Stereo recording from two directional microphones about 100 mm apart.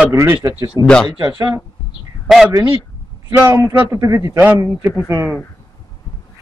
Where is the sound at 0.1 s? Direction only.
30° right (ahead or behind).